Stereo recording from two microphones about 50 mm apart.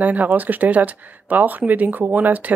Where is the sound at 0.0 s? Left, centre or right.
Right.